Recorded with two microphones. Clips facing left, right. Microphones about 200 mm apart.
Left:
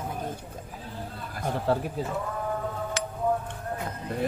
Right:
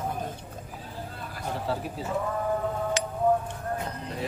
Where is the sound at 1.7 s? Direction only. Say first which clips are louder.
Left 6 dB; 55° left (ahead or behind).